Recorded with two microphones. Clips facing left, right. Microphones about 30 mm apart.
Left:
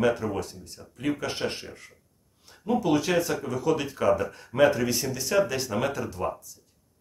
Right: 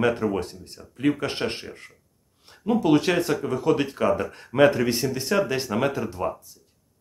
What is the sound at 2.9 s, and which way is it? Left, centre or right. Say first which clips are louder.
Speech: right 4 dB; right.